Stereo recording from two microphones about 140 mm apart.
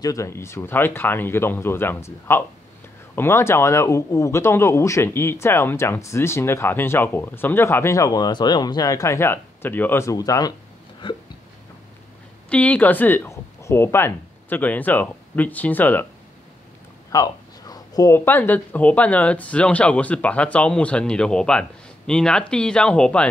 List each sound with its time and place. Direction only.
0.0 s speech: 20° left (ahead or behind)
11.0 s hiccup: 35° left (ahead or behind)
12.4 s speech: 10° left (ahead or behind)
17.1 s speech: 25° left (ahead or behind); by 23.2 s 5° left (ahead or behind)